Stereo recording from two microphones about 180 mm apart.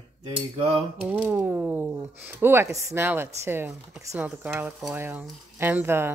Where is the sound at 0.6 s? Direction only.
35° right (ahead or behind).